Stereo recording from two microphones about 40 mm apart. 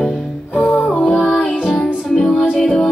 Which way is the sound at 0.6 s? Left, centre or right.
Left.